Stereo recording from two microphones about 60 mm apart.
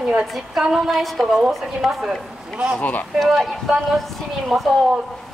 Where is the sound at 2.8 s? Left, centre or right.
Left.